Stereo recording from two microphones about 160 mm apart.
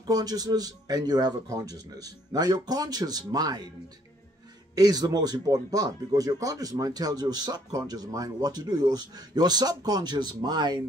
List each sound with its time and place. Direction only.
0.0 s speech: 25° right (ahead or behind)
4.7 s speech: 25° right (ahead or behind)